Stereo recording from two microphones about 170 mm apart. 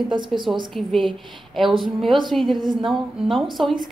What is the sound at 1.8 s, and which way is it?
A woman's voice, centre (ahead or behind).